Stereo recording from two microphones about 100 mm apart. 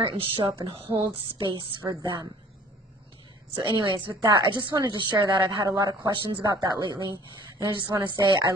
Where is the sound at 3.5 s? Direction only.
45° right (ahead or behind).